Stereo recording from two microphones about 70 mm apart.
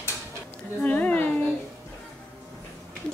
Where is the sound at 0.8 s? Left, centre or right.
Left.